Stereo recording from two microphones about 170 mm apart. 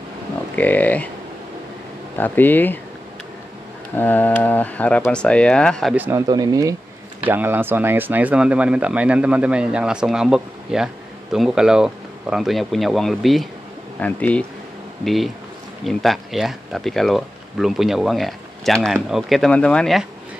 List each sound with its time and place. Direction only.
0.6 s speech: 10° left (ahead or behind)
2.1 s speech: 10° left (ahead or behind)
3.9 s speech: 10° left (ahead or behind)
5.9 s speech: 10° right (ahead or behind)
7.2 s speech: 10° right (ahead or behind); by 14.4 s 10° left (ahead or behind)
15.8 s speech: centre (ahead or behind)